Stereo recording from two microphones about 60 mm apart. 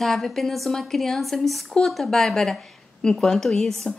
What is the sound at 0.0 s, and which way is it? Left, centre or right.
Speech, centre.